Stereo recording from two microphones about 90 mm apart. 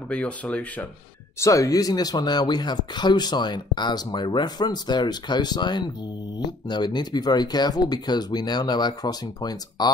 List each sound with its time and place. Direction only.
0.1 s speech: 15° left (ahead or behind)
1.4 s speech: 35° left (ahead or behind)